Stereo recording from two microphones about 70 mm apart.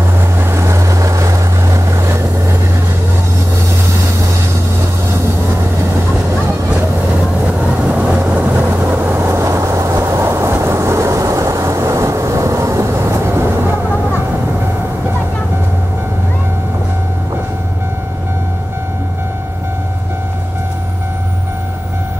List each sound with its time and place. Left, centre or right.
0.4 s vehicle: right
7.9 s vehicle: centre
9.1 s vehicle: right